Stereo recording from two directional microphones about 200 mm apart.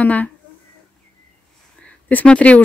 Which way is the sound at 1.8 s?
5° left (ahead or behind).